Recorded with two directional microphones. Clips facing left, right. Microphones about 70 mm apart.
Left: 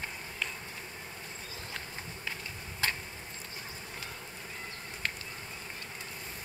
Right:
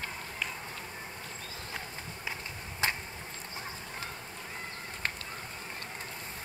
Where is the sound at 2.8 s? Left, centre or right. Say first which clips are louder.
Right 2 dB; centre.